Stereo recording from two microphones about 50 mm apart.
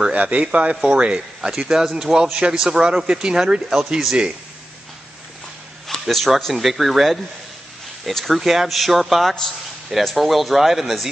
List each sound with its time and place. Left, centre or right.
0.1 s speech: right
5.9 s speech: centre